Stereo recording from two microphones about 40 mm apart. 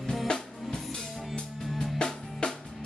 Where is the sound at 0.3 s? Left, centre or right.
Centre.